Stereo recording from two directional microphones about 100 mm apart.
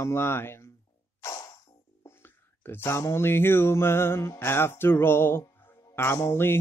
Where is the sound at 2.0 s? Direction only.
20° left (ahead or behind).